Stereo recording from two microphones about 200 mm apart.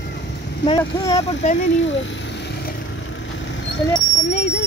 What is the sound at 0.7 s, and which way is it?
Speech, 20° left (ahead or behind).